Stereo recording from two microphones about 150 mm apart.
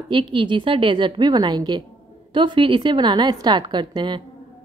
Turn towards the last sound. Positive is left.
turn(degrees=-30)  # may be behind; listen again after turning